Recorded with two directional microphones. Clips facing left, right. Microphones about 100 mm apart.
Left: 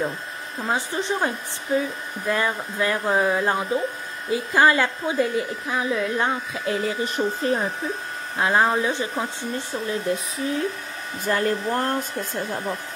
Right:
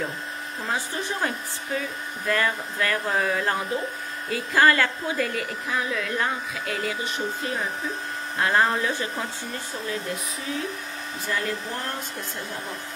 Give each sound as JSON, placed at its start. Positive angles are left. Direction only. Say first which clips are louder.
{"t": 0.7, "sound": "a woman's voice", "louder": "left 5 dB", "side_deg": 25}
{"t": 8.4, "sound": "a woman's voice", "louder": "left 2 dB", "side_deg": 20}
{"t": 11.2, "sound": "hair dryer", "louder": "left 7 dB", "side_deg": 55}